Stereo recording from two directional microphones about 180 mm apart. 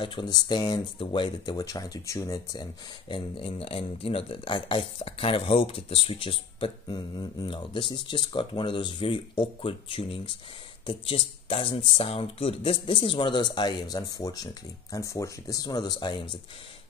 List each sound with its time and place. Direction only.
0.0 s speech: 25° left (ahead or behind)